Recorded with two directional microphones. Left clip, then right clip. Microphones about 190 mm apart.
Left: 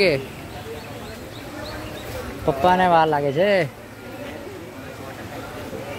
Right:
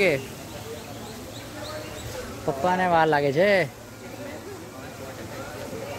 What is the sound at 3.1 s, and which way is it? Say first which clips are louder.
Speech: left 1 dB; 20° right (ahead or behind).